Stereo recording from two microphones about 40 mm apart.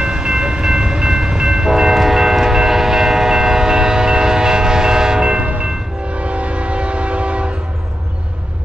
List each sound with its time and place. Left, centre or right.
0.0 s train: centre